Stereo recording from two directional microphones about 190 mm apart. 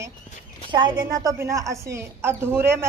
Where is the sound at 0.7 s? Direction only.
25° right (ahead or behind).